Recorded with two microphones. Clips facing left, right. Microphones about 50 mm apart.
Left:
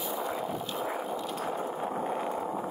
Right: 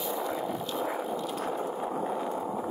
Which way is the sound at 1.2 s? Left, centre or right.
Centre.